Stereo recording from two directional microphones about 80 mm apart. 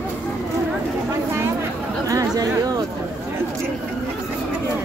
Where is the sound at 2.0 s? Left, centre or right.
Right.